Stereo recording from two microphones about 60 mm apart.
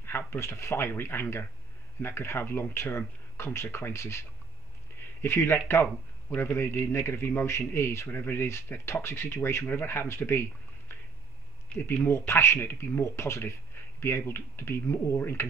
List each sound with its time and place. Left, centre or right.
0.0 s a man's voice: left
12.1 s a man's voice: left